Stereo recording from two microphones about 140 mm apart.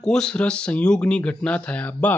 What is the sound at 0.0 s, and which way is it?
Speech, 5° left (ahead or behind).